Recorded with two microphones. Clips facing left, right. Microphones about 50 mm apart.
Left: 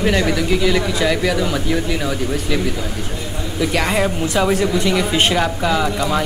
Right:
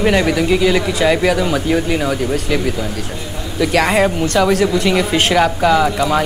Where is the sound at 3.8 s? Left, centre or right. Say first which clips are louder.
Right 5 dB; centre.